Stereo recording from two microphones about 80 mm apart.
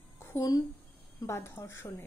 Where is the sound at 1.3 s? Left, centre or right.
Left.